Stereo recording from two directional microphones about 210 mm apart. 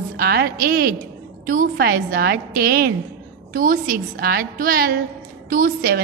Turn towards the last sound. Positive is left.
turn(degrees=-45)  # may be behind; listen again after turning